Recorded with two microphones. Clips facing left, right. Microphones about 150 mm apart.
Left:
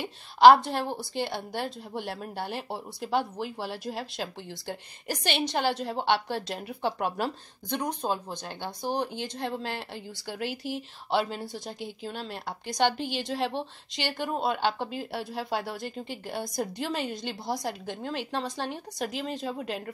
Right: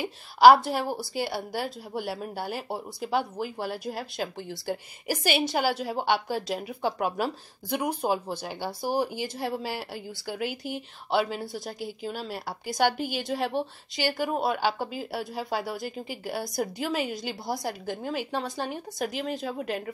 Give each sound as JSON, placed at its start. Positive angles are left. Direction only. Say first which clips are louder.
{"t": 0.0, "sound": "a woman's voice", "louder": "even", "side_deg": -5}